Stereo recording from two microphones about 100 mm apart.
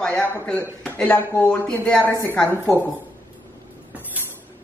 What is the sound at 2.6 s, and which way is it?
Speech, 20° left (ahead or behind).